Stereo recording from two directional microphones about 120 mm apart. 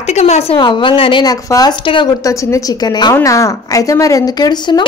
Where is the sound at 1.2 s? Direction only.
35° left (ahead or behind).